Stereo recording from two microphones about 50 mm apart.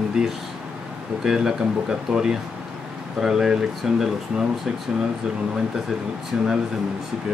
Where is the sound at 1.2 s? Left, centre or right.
Centre.